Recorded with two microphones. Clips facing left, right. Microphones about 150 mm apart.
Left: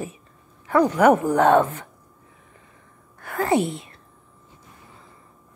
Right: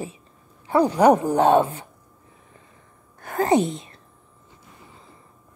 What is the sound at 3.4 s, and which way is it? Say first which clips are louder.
Speech: right 1 dB; 20° right (ahead or behind).